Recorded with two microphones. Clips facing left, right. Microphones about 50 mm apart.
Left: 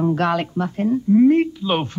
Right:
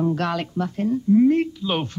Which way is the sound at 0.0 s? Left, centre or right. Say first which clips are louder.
Left 4 dB; left.